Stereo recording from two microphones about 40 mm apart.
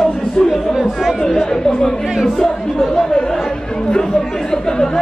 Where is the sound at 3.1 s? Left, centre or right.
Centre.